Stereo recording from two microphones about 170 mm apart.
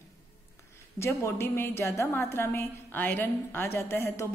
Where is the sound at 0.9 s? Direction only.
15° left (ahead or behind).